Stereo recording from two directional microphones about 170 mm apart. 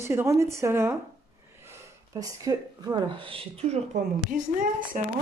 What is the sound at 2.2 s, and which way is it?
Speech, 20° right (ahead or behind).